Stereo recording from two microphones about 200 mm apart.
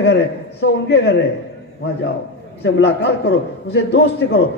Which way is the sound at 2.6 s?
60° left (ahead or behind).